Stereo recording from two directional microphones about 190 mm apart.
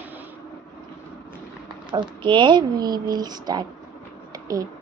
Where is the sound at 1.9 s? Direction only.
25° right (ahead or behind).